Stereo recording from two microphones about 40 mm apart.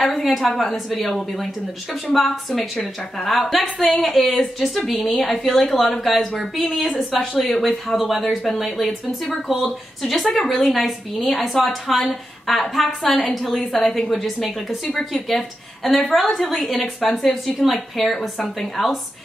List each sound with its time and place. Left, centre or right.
0.0 s speech: centre
14.7 s a woman's voice: left
15.1 s a woman's voice: centre